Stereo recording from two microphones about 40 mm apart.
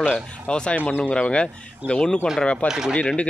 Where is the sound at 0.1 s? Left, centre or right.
Left.